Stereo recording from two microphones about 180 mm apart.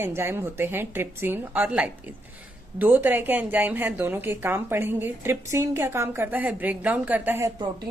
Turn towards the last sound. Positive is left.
turn(degrees=-10)  # may be behind; listen again after turning